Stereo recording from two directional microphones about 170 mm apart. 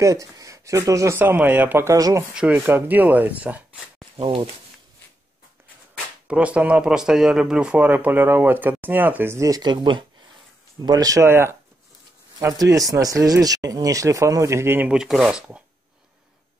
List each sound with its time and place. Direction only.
0.0 s speech: 20° right (ahead or behind)
2.3 s speech: 10° right (ahead or behind)
4.2 s speech: 30° right (ahead or behind)
6.2 s speech: 5° right (ahead or behind)